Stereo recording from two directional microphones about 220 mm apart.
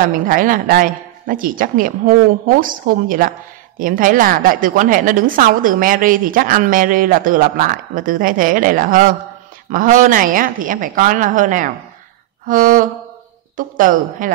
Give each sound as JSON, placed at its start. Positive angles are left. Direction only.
{"t": 0.0, "sound": "speech", "side_deg": -40}